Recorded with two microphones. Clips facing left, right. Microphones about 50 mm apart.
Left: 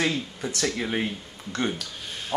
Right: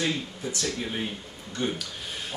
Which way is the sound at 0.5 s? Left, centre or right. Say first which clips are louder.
Left 4 dB; left.